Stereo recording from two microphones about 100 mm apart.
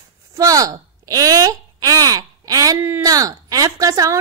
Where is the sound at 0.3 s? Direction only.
35° right (ahead or behind).